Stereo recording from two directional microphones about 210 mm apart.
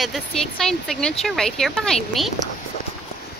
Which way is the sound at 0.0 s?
Centre (ahead or behind).